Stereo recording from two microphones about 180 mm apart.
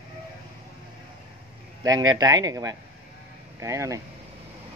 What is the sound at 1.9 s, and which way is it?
Speech, 20° right (ahead or behind).